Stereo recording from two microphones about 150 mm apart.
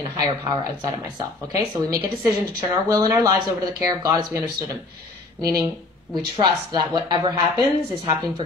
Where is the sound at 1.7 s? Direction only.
25° right (ahead or behind).